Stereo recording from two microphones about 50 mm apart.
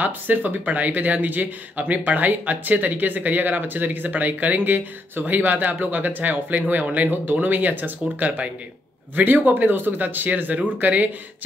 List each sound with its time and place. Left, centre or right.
0.0 s speech: right